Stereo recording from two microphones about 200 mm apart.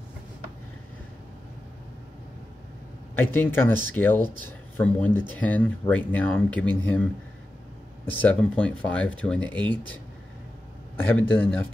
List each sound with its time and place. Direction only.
3.2 s speech: 10° left (ahead or behind)
11.0 s speech: 10° left (ahead or behind)